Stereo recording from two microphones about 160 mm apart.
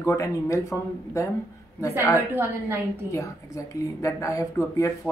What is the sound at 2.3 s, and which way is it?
Speech, 15° right (ahead or behind).